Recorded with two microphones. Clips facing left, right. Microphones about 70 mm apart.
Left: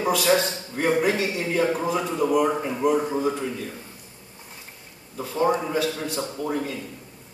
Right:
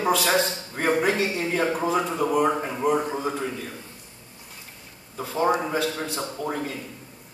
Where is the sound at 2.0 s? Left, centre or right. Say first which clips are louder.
Left 1 dB; centre.